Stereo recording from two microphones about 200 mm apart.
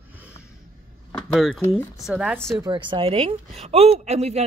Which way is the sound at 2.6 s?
25° right (ahead or behind).